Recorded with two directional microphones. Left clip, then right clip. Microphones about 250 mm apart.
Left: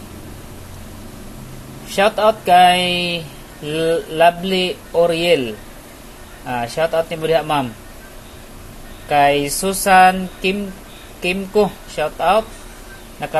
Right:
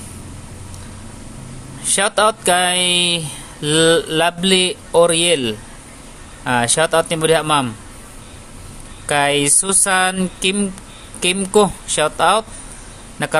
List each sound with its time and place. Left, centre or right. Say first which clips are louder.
2.0 s speech: left 1 dB; centre
9.1 s speech: left 2 dB; centre